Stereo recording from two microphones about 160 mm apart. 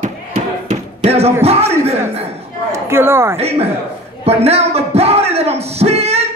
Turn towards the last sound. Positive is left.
turn(degrees=-40)  # may be behind; listen again after turning